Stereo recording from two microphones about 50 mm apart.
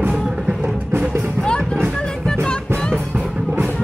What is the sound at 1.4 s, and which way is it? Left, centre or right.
Music, centre.